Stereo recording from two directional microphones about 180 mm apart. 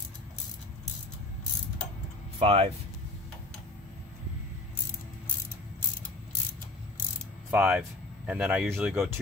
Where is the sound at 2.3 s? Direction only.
30° right (ahead or behind).